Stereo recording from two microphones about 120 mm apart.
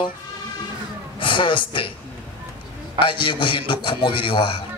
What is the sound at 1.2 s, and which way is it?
Speech, 45° left (ahead or behind).